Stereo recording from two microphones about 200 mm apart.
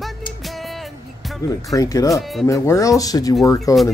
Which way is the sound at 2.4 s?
15° left (ahead or behind).